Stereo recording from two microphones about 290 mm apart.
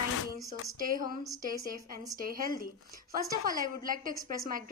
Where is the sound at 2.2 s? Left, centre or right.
Right.